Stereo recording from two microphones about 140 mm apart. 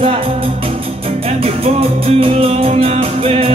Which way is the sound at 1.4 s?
45° right (ahead or behind).